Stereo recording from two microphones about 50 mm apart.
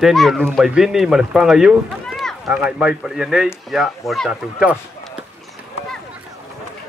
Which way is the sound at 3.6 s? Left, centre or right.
Centre.